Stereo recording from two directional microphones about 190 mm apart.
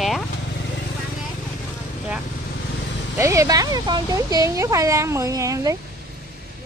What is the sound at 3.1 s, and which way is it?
Speech, 15° right (ahead or behind).